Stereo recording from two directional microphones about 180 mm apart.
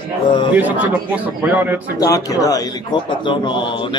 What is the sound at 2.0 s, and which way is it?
A man's voice, 20° left (ahead or behind).